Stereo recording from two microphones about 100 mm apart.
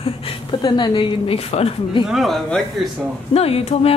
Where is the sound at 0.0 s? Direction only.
65° left (ahead or behind).